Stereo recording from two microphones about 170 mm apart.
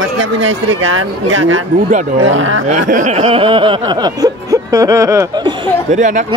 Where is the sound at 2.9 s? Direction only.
45° right (ahead or behind); by 5.5 s 20° right (ahead or behind).